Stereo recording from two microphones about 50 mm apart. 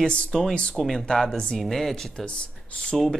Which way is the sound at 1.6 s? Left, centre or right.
Centre.